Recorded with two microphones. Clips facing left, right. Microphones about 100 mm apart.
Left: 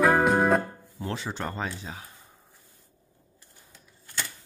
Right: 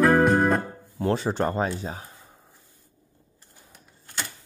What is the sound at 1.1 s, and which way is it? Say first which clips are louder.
Speech: right 9 dB; 45° right (ahead or behind).